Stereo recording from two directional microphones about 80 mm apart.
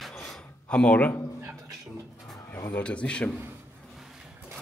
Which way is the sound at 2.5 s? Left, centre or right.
Left.